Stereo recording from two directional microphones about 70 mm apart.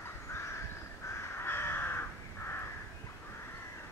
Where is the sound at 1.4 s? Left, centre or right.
Left.